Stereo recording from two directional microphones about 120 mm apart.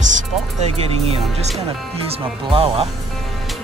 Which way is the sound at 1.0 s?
60° right (ahead or behind).